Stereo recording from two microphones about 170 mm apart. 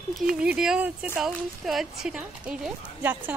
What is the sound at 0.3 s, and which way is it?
Speech, 5° right (ahead or behind).